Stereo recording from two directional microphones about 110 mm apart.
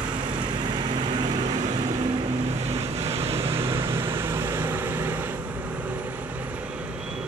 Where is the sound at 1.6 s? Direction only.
90° right.